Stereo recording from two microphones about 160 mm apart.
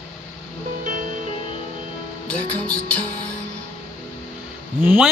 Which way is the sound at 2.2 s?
5° left (ahead or behind).